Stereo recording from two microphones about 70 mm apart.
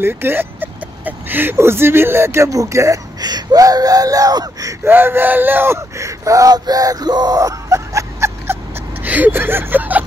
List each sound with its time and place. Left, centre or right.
0.0 s speech: right
3.2 s speech: right
4.8 s speech: right
6.5 s speech: right
9.0 s speech: right